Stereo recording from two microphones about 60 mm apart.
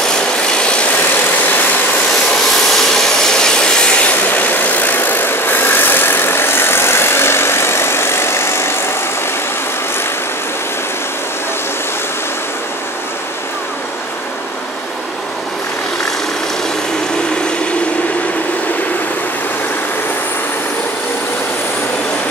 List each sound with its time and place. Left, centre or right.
0.1 s vehicle: centre
2.7 s vehicle: centre; by 8.8 s left